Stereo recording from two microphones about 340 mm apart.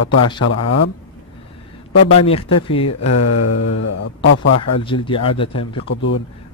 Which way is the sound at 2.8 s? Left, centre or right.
Left.